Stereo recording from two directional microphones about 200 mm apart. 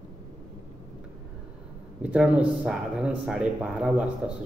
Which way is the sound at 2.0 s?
5° right (ahead or behind).